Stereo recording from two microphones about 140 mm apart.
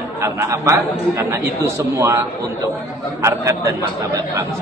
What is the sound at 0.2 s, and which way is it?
A man's voice, 20° right (ahead or behind).